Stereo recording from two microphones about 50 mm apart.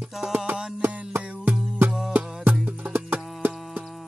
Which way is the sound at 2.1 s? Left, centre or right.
Right.